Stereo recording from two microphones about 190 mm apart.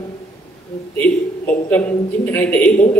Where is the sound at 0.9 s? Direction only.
10° left (ahead or behind).